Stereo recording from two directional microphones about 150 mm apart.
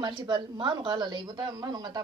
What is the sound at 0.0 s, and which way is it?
A woman's voice, 30° right (ahead or behind).